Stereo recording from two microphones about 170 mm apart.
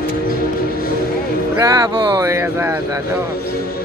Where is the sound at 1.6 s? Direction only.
20° right (ahead or behind).